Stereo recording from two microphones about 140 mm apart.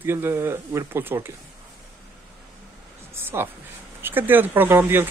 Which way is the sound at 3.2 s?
15° right (ahead or behind).